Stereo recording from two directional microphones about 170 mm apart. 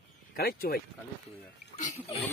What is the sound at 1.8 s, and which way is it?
Speech, 45° left (ahead or behind).